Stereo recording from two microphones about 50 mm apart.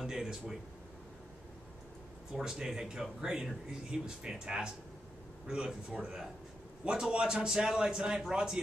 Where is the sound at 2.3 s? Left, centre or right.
Centre.